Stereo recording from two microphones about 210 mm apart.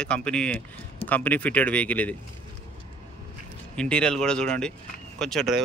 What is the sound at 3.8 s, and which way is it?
Speech, 5° left (ahead or behind).